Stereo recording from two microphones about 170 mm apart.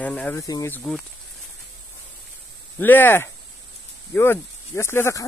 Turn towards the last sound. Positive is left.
turn(degrees=15)  # may be behind; listen again after turning